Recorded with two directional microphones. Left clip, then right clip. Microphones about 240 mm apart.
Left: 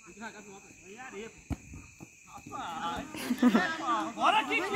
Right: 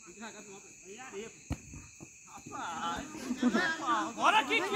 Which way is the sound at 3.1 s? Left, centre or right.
Left.